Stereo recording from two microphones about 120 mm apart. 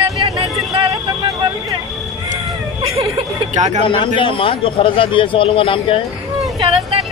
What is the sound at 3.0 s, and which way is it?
Speech, 45° right (ahead or behind).